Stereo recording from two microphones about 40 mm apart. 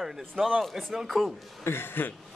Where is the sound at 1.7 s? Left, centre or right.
Left.